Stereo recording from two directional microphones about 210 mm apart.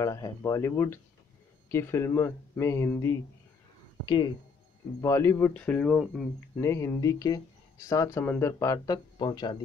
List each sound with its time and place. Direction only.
0.0 s speech: 15° left (ahead or behind)
6.6 s speech: 15° left (ahead or behind)